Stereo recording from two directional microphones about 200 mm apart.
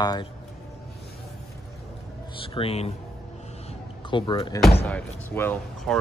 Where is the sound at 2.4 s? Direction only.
30° left (ahead or behind).